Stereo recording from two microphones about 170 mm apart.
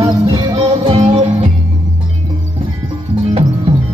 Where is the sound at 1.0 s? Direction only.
35° right (ahead or behind).